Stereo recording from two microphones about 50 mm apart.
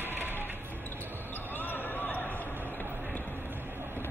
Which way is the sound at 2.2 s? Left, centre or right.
Left.